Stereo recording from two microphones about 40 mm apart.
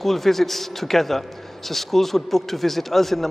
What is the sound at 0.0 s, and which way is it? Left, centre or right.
A man's voice, centre.